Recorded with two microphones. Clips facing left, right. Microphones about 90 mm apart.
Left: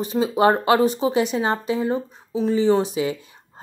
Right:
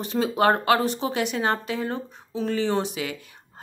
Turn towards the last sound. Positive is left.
turn(degrees=25)  # may be behind; listen again after turning